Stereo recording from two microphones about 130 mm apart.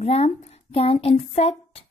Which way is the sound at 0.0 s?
55° left (ahead or behind).